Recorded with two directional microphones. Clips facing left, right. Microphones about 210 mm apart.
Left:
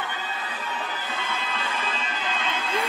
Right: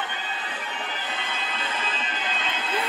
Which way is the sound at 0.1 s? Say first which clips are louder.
Left 1 dB; 25° right (ahead or behind).